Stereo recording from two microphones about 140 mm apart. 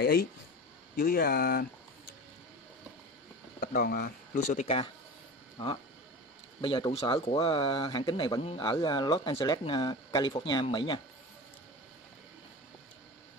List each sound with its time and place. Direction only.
0.9 s speech: 90° left
3.6 s speech: 85° left
4.6 s speech: 45° left (ahead or behind); by 8.4 s 30° left (ahead or behind)
8.4 s speech: 40° left (ahead or behind)